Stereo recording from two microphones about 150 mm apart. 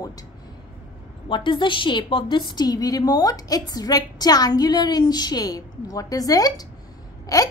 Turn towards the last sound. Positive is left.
turn(degrees=25)  # may be behind; listen again after turning